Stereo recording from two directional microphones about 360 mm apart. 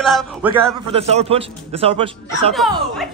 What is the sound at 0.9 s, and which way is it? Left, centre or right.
Speech, centre.